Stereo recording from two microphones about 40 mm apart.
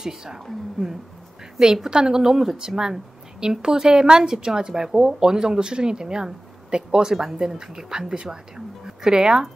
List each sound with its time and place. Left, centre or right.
0.0 s a woman's voice: centre